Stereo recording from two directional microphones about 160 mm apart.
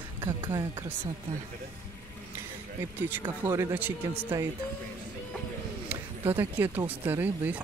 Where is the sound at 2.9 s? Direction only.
10° right (ahead or behind).